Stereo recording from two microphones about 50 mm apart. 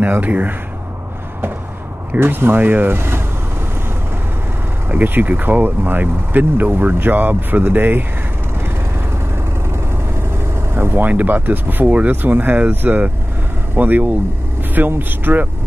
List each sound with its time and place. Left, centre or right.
0.0 s speech: right
2.1 s speech: right
4.8 s speech: right
10.7 s speech: right